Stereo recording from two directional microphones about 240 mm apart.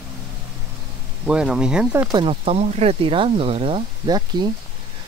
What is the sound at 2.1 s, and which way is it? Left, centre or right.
Speech, right.